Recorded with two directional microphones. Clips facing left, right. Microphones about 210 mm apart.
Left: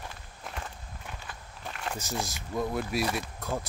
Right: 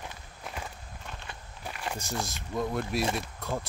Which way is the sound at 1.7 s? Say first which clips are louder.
Even; 5° right (ahead or behind).